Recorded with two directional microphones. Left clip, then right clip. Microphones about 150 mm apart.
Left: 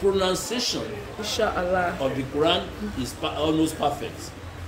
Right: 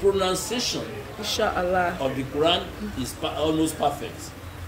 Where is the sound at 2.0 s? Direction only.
15° left (ahead or behind).